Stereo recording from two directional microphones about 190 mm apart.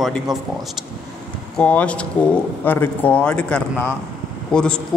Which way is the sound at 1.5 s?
5° left (ahead or behind).